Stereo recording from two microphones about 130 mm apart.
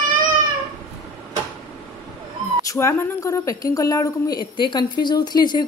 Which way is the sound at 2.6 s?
25° left (ahead or behind).